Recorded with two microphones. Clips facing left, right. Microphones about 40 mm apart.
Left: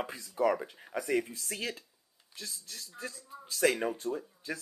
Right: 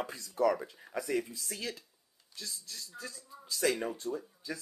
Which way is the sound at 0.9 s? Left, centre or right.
Left.